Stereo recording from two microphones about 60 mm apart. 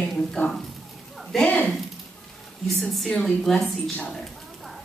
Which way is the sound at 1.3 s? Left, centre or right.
Centre.